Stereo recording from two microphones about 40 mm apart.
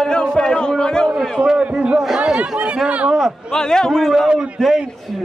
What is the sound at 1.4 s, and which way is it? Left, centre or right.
Speech, right.